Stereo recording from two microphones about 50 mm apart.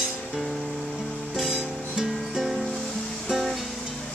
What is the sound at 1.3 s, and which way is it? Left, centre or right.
Music, centre.